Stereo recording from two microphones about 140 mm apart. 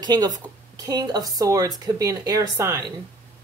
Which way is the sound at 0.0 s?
30° right (ahead or behind).